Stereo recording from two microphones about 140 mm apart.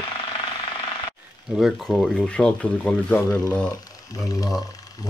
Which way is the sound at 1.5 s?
Centre (ahead or behind).